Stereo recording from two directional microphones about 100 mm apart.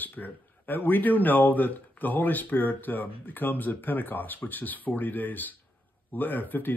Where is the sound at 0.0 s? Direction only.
15° left (ahead or behind).